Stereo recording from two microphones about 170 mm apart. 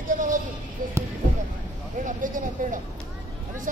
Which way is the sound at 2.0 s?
50° right (ahead or behind).